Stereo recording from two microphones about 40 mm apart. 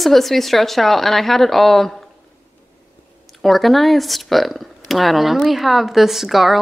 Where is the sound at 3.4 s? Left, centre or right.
Centre.